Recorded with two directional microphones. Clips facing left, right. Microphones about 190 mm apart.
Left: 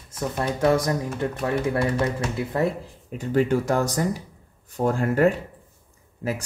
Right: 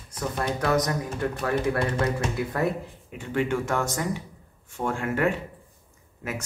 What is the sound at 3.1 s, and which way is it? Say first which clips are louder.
Speech: left 5 dB; 40° left (ahead or behind).